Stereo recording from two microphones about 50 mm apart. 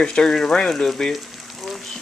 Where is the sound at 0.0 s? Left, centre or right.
Centre.